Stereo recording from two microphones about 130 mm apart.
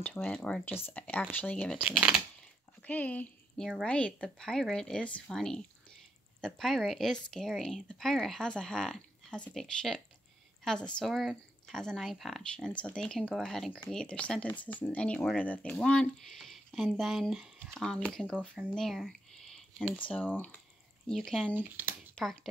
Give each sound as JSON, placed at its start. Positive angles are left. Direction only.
{"t": 0.0, "sound": "speech", "side_deg": 10}
{"t": 1.9, "sound": "speech", "side_deg": -5}
{"t": 2.8, "sound": "speech", "side_deg": 10}
{"t": 21.5, "sound": "speech", "side_deg": -15}
{"t": 22.1, "sound": "speech", "side_deg": 5}